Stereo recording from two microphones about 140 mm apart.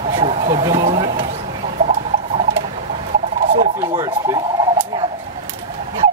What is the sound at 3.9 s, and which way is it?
Speech, 25° right (ahead or behind).